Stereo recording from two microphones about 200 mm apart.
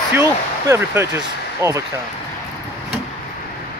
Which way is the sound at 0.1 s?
10° right (ahead or behind).